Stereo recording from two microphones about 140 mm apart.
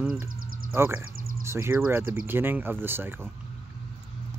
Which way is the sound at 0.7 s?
20° right (ahead or behind).